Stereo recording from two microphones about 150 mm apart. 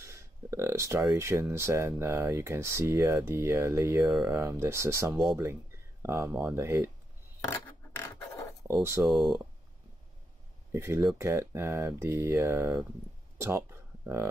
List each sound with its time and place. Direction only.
0.0 s speech: 20° right (ahead or behind)
5.1 s speech: 5° right (ahead or behind)
6.0 s speech: 20° right (ahead or behind)
7.4 s scrape: 20° left (ahead or behind)
9.0 s speech: 5° right (ahead or behind)
10.7 s speech: 20° right (ahead or behind)